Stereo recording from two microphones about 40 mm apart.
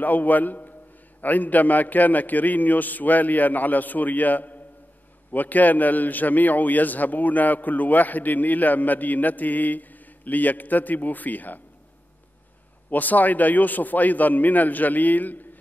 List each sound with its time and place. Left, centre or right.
0.0 s a man's voice: left
12.9 s a man's voice: left